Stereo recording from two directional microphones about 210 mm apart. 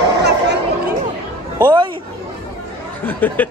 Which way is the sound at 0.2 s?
55° right (ahead or behind).